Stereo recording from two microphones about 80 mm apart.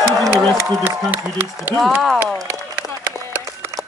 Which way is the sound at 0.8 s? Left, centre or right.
Right.